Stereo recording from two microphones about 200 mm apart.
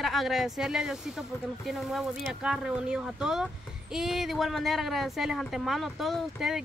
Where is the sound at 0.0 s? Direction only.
Centre (ahead or behind).